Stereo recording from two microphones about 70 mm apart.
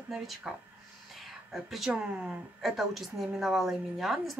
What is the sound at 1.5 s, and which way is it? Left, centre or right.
A woman's voice, centre.